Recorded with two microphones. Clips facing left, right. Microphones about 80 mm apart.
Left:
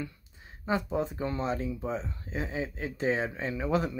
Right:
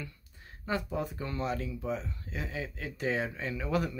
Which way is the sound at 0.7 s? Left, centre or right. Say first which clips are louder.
Left 4 dB; left.